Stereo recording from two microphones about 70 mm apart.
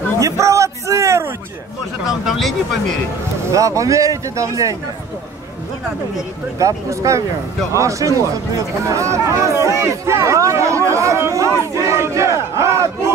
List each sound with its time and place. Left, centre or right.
0.2 s a sound: right
2.2 s speech: centre
3.5 s speech: right
6.6 s speech: right
11.7 s battle cry: right